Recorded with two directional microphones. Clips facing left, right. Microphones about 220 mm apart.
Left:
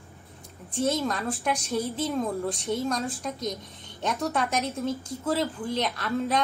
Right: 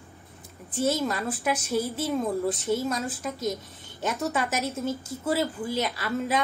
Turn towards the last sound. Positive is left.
turn(degrees=-5)  # may be behind; listen again after turning